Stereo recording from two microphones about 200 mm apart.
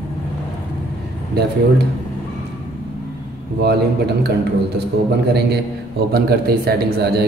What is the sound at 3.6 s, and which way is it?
Speech, 55° right (ahead or behind).